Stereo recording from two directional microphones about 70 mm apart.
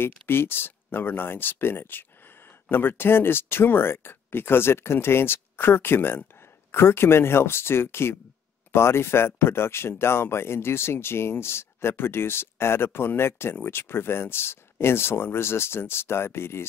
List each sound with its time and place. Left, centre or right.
0.0 s speech: left